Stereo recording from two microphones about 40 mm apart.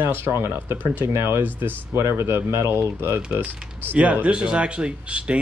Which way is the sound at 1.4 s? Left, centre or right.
Right.